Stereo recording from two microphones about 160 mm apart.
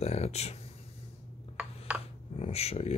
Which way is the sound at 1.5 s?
5° right (ahead or behind).